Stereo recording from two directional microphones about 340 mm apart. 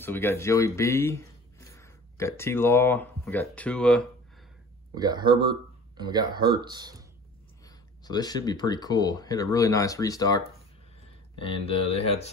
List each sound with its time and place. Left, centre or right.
0.0 s speech: centre
4.9 s speech: centre
7.6 s speech: centre